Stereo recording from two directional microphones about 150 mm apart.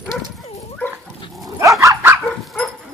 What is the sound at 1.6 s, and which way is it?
Dog, 20° right (ahead or behind).